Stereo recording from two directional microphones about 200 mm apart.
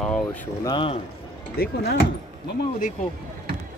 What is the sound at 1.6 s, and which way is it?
Speech, 55° left (ahead or behind).